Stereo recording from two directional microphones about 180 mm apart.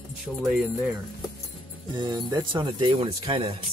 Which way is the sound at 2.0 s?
25° right (ahead or behind).